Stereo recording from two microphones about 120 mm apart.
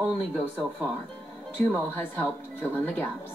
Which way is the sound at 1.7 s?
15° left (ahead or behind).